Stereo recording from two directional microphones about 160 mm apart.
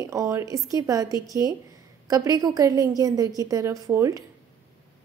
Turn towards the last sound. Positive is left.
turn(degrees=-20)  # may be behind; listen again after turning